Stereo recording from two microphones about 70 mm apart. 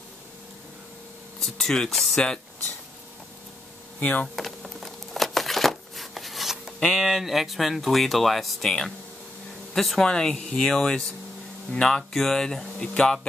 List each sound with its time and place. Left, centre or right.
1.4 s speech: centre
4.0 s speech: centre
4.4 s a sound: centre
6.9 s speech: centre